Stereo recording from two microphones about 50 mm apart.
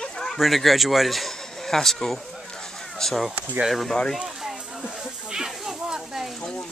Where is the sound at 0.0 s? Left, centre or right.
Centre.